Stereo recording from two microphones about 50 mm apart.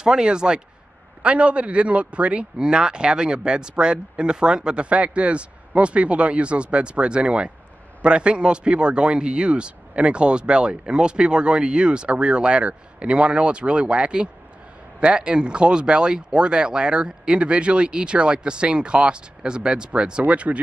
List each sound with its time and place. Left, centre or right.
0.0 s speech: centre